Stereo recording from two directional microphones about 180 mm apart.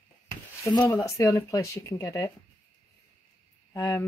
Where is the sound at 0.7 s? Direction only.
15° left (ahead or behind).